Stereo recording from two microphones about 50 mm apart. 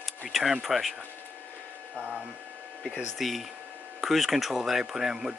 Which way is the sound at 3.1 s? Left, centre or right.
Centre.